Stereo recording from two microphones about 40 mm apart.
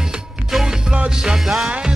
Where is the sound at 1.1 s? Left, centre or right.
Centre.